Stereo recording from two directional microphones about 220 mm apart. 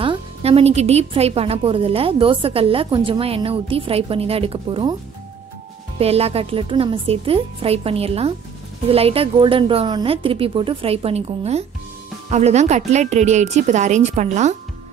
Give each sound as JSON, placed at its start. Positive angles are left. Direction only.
{"t": 0.0, "sound": "a woman's voice", "side_deg": -25}
{"t": 5.9, "sound": "a woman's voice", "side_deg": -25}